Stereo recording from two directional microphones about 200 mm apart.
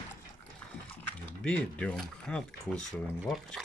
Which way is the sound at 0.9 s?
5° left (ahead or behind).